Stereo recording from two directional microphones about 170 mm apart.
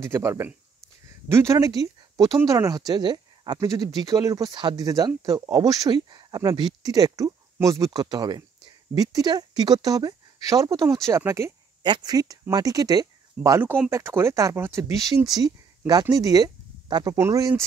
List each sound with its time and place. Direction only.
0.0 s speech: 15° right (ahead or behind)